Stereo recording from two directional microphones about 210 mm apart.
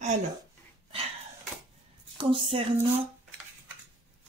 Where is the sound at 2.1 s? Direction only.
25° right (ahead or behind).